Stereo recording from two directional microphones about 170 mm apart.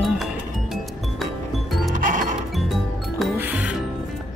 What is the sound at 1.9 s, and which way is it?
Music, 50° right (ahead or behind).